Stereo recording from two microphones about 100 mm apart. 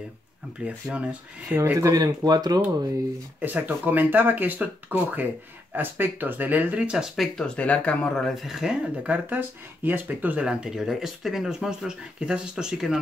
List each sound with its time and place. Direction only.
0.6 s speech: 10° right (ahead or behind)
1.6 s speech: 30° right (ahead or behind)
3.3 s speech: 15° right (ahead or behind)
7.3 s speech: 10° left (ahead or behind); by 12.9 s 5° right (ahead or behind)